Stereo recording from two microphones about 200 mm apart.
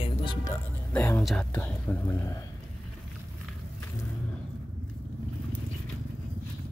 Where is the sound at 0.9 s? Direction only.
5° left (ahead or behind).